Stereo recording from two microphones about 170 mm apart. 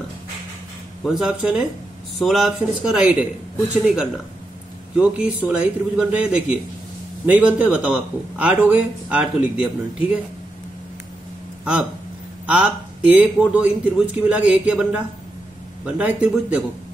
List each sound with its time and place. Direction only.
1.0 s a man's voice: 5° right (ahead or behind)
12.4 s speech: 5° right (ahead or behind)